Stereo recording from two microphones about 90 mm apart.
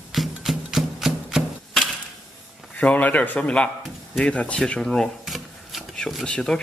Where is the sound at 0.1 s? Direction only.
Centre (ahead or behind).